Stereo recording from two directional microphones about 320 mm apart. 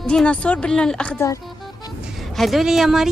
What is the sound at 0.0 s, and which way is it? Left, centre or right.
A woman's voice, centre.